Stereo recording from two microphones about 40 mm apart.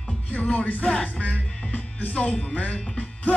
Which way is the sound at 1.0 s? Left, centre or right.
Left.